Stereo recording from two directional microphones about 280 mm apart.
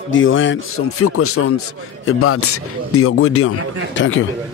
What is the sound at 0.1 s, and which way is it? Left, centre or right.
A man's voice, left.